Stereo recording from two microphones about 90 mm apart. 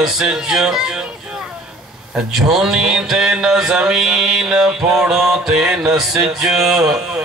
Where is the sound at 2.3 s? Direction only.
5° right (ahead or behind).